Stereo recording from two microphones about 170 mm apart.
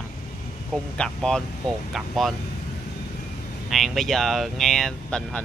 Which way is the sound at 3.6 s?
Centre (ahead or behind).